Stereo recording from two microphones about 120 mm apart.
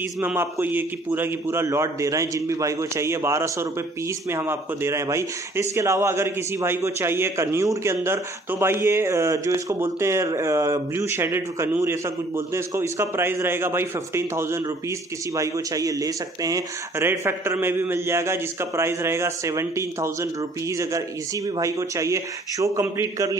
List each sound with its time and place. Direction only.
0.2 s speech: 15° right (ahead or behind)